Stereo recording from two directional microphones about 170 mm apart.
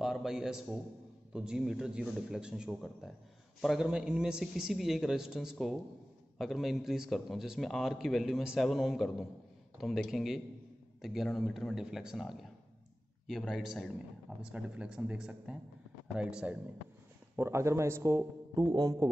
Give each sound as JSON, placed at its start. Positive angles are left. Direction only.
{"t": 0.0, "sound": "a man's voice", "side_deg": 0}